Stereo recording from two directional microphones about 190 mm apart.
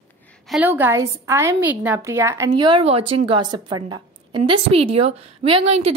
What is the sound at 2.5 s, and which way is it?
A woman's voice, 25° right (ahead or behind).